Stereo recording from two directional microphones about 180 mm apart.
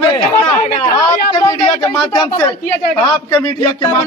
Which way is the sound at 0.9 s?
20° left (ahead or behind).